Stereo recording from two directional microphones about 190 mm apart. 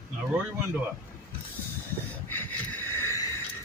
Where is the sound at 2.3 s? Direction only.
10° left (ahead or behind).